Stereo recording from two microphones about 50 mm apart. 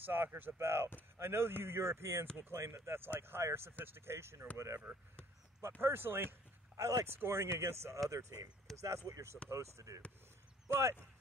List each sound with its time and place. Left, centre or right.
0.0 s speech: right
0.6 s speech: right
4.6 s speech: right
5.8 s speech: right
6.8 s speech: right
7.1 s speech: right
8.1 s speech: right
8.7 s speech: centre
9.1 s speech: right
9.5 s speech: right
10.7 s speech: right